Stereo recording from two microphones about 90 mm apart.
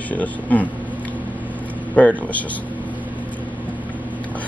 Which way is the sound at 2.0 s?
15° left (ahead or behind).